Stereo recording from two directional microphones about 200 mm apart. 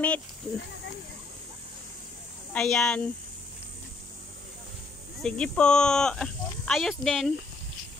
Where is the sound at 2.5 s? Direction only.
5° left (ahead or behind).